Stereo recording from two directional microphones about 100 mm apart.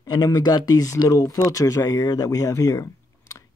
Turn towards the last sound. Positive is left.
turn(degrees=35)  # may be behind; listen again after turning